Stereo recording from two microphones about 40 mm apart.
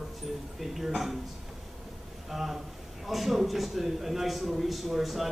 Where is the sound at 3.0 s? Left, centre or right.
Centre.